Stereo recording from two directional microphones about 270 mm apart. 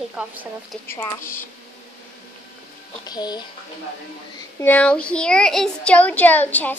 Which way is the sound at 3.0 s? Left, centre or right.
Centre.